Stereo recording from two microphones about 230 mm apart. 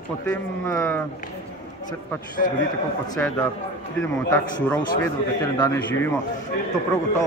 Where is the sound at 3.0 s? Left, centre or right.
Centre.